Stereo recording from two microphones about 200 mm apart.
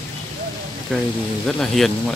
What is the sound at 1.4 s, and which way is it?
Speech, centre (ahead or behind).